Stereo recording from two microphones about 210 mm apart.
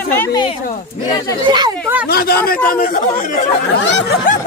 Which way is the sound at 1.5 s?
20° right (ahead or behind).